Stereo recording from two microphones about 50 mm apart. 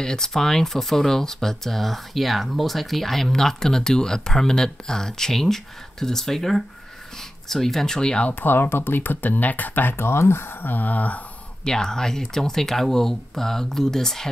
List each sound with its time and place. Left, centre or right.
0.0 s speech: centre
8.3 s speech: left
11.6 s speech: centre